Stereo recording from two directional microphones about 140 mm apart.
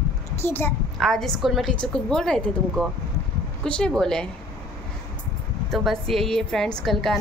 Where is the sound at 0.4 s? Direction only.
15° left (ahead or behind).